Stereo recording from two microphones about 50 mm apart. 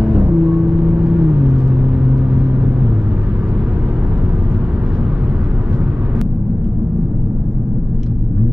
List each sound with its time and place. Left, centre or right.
0.0 s vehicle: right